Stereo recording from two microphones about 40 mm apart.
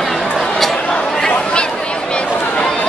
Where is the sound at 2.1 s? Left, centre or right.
Left.